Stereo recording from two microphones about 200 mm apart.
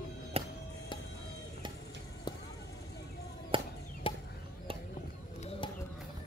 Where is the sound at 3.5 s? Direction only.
25° right (ahead or behind).